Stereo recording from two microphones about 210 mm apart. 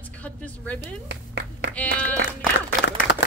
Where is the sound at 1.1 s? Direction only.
55° right (ahead or behind).